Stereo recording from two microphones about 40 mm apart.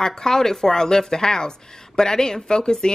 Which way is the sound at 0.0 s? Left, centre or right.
Centre.